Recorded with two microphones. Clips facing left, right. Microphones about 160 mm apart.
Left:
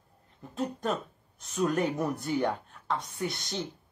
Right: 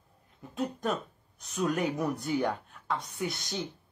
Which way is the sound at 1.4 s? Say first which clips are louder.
Left 2 dB; centre (ahead or behind).